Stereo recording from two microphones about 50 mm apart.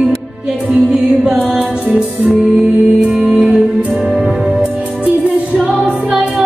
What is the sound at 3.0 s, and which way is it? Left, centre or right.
Music, centre.